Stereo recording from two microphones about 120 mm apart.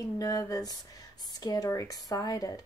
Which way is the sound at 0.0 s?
30° left (ahead or behind).